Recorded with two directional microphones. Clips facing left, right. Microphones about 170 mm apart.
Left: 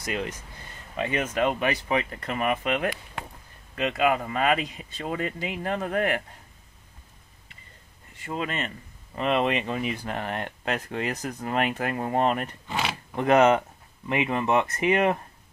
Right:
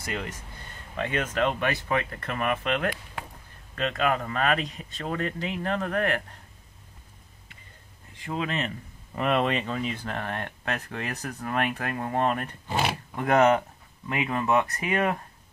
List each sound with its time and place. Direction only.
0.0 s speech: 20° left (ahead or behind)
8.2 s speech: 5° left (ahead or behind)
9.7 s speech: 15° left (ahead or behind)